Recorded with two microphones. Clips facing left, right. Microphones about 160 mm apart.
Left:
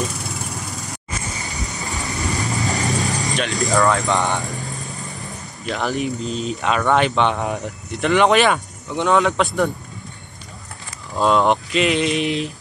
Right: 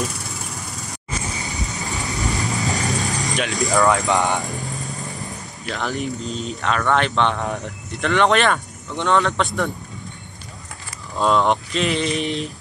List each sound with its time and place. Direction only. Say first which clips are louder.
1.5 s vehicle: right 1 dB; 20° right (ahead or behind)
1.8 s vehicle: even; centre (ahead or behind)
3.4 s speech: even; centre (ahead or behind)
4.1 s speech: right 1 dB; 15° right (ahead or behind)
4.4 s vehicle: right 1 dB; centre (ahead or behind)
5.7 s speech: left 3 dB; centre (ahead or behind)
11.1 s speech: left 2 dB; 5° left (ahead or behind)